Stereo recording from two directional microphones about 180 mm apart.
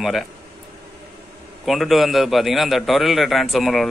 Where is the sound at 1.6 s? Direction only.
Centre (ahead or behind).